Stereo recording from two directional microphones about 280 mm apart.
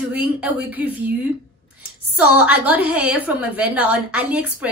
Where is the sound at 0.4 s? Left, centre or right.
Centre.